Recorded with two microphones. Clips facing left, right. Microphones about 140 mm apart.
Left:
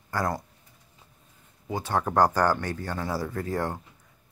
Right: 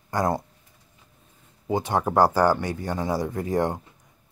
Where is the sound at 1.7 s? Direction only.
15° right (ahead or behind).